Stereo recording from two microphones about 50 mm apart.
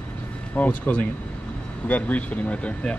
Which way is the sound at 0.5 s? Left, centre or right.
Left.